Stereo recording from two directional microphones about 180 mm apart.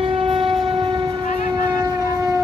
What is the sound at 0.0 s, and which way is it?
Train, 30° right (ahead or behind).